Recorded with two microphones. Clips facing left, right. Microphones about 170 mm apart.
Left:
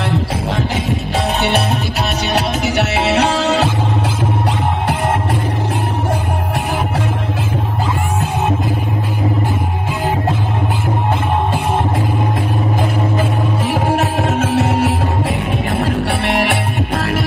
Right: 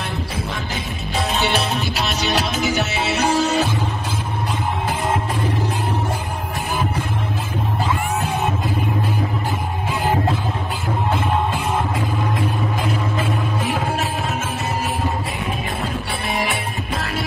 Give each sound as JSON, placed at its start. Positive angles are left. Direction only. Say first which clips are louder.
{"t": 2.3, "sound": "music", "louder": "left 4 dB", "side_deg": 70}
{"t": 14.2, "sound": "music", "louder": "left 9 dB", "side_deg": 70}